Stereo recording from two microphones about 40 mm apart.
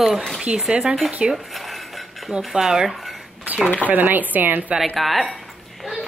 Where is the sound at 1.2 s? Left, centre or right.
Centre.